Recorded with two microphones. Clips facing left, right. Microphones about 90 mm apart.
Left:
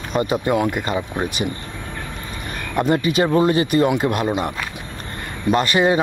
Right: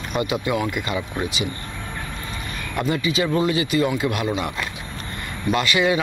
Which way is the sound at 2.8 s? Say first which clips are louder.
Left 5 dB; 45° left (ahead or behind).